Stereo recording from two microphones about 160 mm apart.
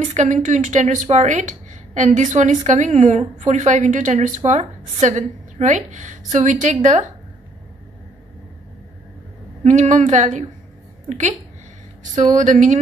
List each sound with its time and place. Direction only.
0.0 s a woman's voice: 50° right (ahead or behind)
9.6 s a woman's voice: 50° right (ahead or behind)